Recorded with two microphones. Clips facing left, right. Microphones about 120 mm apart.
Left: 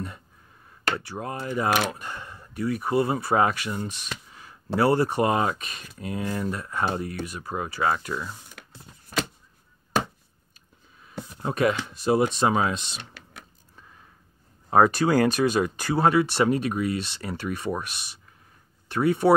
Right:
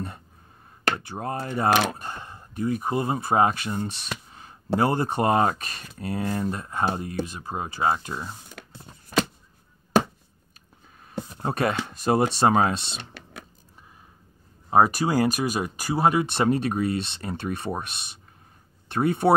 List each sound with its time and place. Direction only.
0.9 s speech: 25° right (ahead or behind)
1.2 s speech: 35° right (ahead or behind)
5.2 s speech: 40° right (ahead or behind)
11.0 s speech: 40° right (ahead or behind)
14.7 s speech: 10° right (ahead or behind)
16.4 s speech: 30° right (ahead or behind)